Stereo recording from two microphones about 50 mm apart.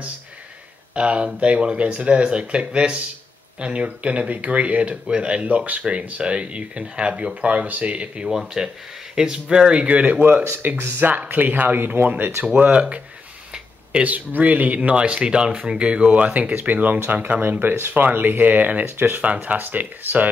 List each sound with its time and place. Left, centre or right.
0.9 s speech: right
8.3 s speech: centre; by 10.1 s right
10.6 s speech: right
12.5 s speech: right
14.0 s speech: right
16.3 s speech: right
19.2 s speech: right